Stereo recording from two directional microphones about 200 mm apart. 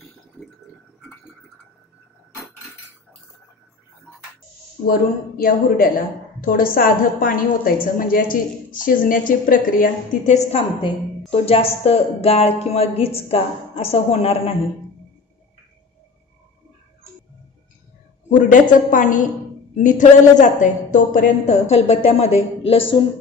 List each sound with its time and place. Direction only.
5.4 s a woman's voice: 45° left (ahead or behind); by 14.5 s 30° left (ahead or behind)
18.3 s a woman's voice: 40° left (ahead or behind)